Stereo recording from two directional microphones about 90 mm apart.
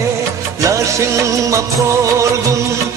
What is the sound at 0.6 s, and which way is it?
Music, 35° right (ahead or behind).